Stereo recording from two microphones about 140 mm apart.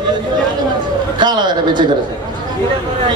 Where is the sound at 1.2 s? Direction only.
30° right (ahead or behind).